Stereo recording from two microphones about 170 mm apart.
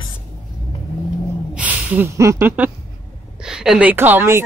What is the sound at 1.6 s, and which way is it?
Speech, 10° right (ahead or behind).